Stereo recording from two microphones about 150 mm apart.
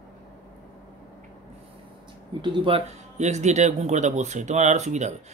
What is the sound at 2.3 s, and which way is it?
Speech, 35° right (ahead or behind).